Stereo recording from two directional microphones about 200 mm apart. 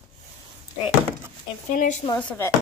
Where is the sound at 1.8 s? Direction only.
35° left (ahead or behind).